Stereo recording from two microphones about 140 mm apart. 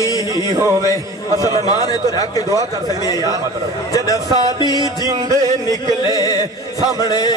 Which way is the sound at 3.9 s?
25° left (ahead or behind).